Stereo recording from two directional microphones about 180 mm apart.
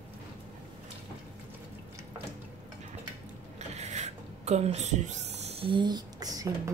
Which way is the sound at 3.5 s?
40° right (ahead or behind).